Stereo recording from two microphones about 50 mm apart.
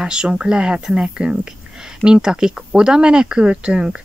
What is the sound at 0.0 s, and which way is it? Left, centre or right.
Speech, centre.